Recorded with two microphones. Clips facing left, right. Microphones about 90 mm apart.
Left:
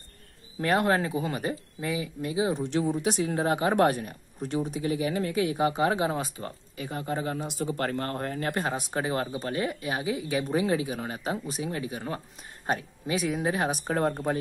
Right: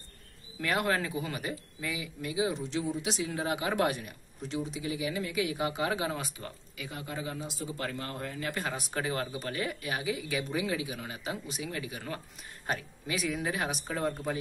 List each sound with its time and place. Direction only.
0.6 s speech: 35° left (ahead or behind)
2.5 s speech: 60° left (ahead or behind)
8.7 s speech: 30° left (ahead or behind)
13.8 s speech: 55° left (ahead or behind)